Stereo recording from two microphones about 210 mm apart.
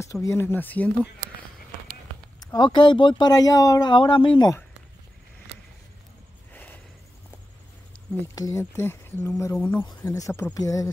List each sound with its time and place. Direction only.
0.0 s speech: 15° left (ahead or behind)
2.4 s speech: 20° left (ahead or behind)
6.5 s snort: 10° left (ahead or behind)
8.4 s speech: 15° left (ahead or behind)